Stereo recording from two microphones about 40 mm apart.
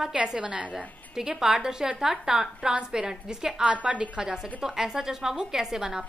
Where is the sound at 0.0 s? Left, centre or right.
Centre.